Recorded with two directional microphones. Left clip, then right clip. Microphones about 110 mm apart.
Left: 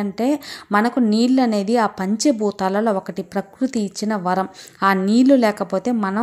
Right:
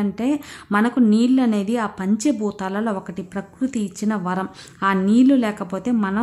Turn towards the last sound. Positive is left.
turn(degrees=30)  # may be behind; listen again after turning